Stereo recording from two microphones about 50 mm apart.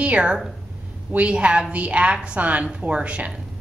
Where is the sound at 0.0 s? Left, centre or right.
Right.